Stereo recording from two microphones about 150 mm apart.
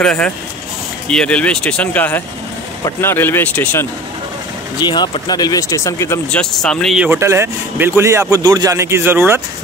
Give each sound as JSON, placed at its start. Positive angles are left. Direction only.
{"t": 0.0, "sound": "speech", "side_deg": 5}
{"t": 4.7, "sound": "speech", "side_deg": 30}
{"t": 6.5, "sound": "speech", "side_deg": 5}
{"t": 7.1, "sound": "a man's voice", "side_deg": -15}